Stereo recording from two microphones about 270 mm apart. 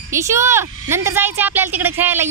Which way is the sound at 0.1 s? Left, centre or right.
Centre.